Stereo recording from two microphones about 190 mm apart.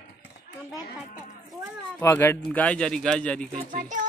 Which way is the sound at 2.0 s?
10° left (ahead or behind).